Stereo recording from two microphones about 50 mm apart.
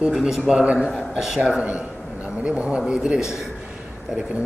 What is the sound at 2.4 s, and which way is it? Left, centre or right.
Speech, right.